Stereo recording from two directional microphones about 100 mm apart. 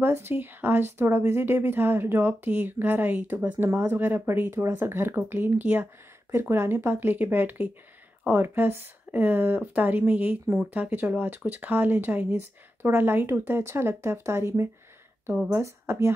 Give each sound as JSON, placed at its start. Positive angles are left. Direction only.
{"t": 0.0, "sound": "speech", "side_deg": -20}